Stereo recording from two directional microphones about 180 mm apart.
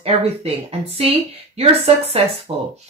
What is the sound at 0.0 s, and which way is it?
A woman's voice, 35° right (ahead or behind).